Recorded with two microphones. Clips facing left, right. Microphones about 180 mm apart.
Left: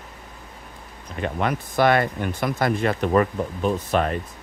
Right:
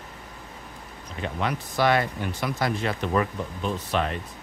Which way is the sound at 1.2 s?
55° left (ahead or behind).